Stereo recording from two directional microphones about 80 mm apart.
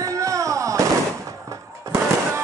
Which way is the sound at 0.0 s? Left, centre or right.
Right.